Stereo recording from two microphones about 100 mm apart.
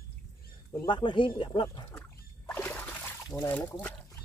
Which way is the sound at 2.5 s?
15° left (ahead or behind).